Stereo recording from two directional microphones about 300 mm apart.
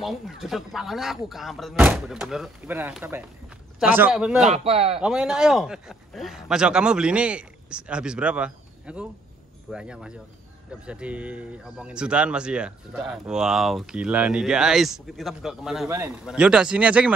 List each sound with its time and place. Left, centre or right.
0.0 s speech: centre
4.5 s speech: centre
5.0 s speech: centre